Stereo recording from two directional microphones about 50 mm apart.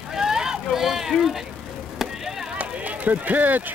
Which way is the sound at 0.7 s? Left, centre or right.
Centre.